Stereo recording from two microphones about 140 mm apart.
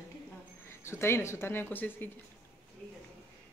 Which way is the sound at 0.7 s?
20° left (ahead or behind).